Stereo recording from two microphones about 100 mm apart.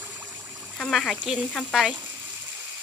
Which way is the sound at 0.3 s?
30° right (ahead or behind).